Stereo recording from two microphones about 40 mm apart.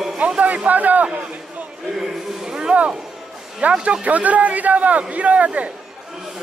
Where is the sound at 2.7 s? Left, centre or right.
Right.